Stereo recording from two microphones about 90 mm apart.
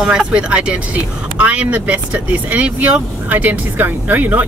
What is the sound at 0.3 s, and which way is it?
Speech, 10° right (ahead or behind).